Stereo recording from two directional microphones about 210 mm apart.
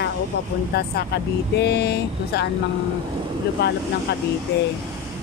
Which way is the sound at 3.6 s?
55° left (ahead or behind).